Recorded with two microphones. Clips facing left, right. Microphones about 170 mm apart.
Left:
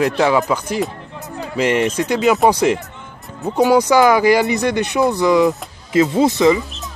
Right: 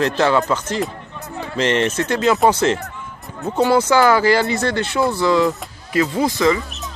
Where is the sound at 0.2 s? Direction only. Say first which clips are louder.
Left 1 dB; 10° left (ahead or behind).